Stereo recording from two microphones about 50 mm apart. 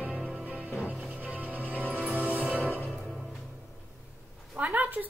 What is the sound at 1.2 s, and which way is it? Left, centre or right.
Music, right.